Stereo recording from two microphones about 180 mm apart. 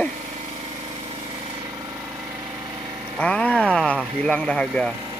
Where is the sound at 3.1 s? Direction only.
5° left (ahead or behind).